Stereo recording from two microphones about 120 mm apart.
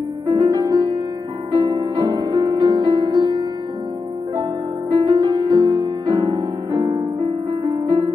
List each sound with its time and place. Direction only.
0.3 s music: 35° right (ahead or behind)
5.0 s music: 35° right (ahead or behind)